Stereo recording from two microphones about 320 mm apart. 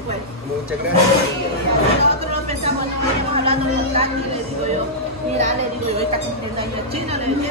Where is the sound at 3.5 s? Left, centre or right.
Centre.